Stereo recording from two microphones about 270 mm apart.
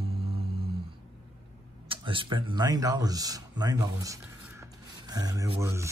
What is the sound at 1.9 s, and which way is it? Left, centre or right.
Speech, centre.